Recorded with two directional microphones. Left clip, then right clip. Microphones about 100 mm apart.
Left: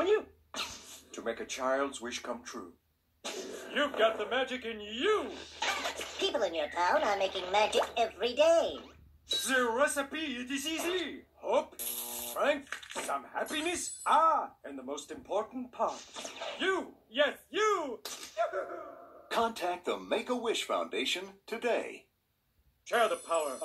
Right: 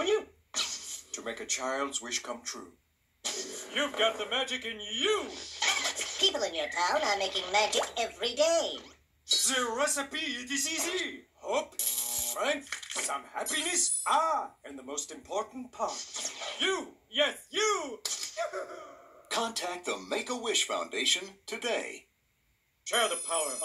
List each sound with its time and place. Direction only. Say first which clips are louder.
0.0 s sneeze: even; 45° left (ahead or behind)
1.1 s speech: right 1 dB; 45° left (ahead or behind)
3.3 s music: right 3 dB; 45° left (ahead or behind)
4.2 s speech: right 1 dB; 45° left (ahead or behind)
22.8 s speech: even; 45° left (ahead or behind)